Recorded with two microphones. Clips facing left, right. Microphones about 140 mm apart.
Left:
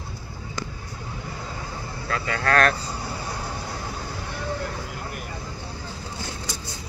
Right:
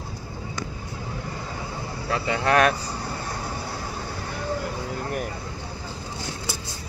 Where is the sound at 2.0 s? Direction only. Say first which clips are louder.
Right 2 dB; 20° right (ahead or behind).